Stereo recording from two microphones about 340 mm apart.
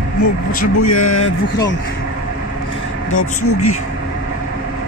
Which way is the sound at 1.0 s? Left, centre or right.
Centre.